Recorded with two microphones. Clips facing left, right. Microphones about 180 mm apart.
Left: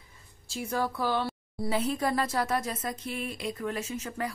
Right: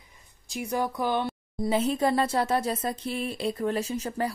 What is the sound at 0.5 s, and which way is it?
A woman's voice, 15° right (ahead or behind).